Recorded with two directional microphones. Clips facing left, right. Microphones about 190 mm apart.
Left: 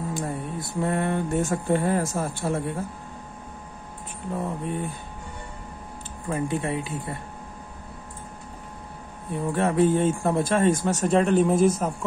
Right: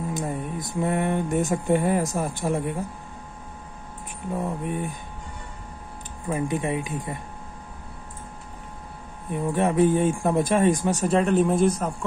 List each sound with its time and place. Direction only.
0.1 s speech: 15° right (ahead or behind)
4.6 s speech: 15° right (ahead or behind)
6.2 s speech: 15° right (ahead or behind)
9.3 s speech: 15° right (ahead or behind)
11.1 s speech: centre (ahead or behind)